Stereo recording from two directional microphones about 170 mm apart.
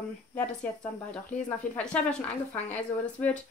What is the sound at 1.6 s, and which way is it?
Speech, 50° left (ahead or behind).